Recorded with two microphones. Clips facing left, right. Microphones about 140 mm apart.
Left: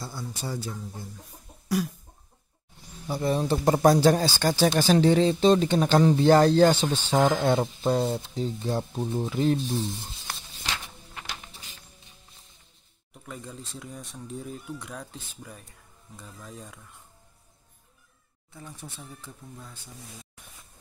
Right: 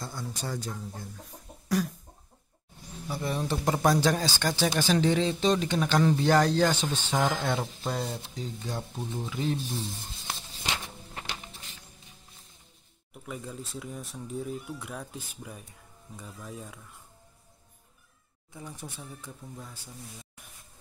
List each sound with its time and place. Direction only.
0.0 s speech: 5° left (ahead or behind)
3.1 s speech: 30° left (ahead or behind)
10.2 s a sound: 20° right (ahead or behind)
13.1 s speech: 5° right (ahead or behind)
18.5 s speech: 15° right (ahead or behind)